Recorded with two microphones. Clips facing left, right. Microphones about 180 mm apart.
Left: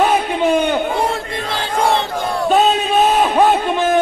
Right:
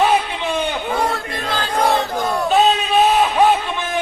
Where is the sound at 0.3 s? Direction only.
45° left (ahead or behind).